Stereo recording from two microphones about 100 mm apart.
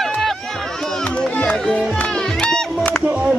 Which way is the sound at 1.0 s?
15° left (ahead or behind).